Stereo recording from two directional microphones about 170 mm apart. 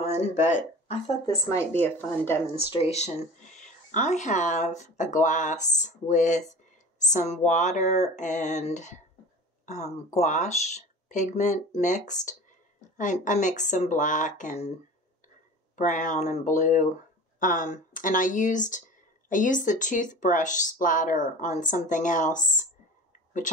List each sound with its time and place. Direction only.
0.0 s speech: 40° left (ahead or behind)
1.2 s speech: 15° left (ahead or behind)
2.7 s speech: 35° left (ahead or behind)
15.7 s speech: 50° left (ahead or behind)